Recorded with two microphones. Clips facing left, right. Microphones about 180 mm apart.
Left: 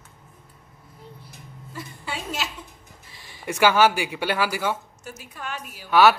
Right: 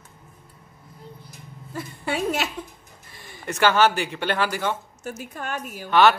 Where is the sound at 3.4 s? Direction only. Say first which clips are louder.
Left 1 dB; 10° left (ahead or behind).